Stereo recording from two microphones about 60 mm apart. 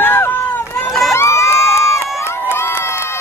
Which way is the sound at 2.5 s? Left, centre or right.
Left.